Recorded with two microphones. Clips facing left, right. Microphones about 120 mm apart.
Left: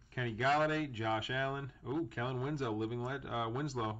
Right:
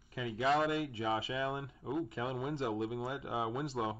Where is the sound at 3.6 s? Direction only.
Centre (ahead or behind).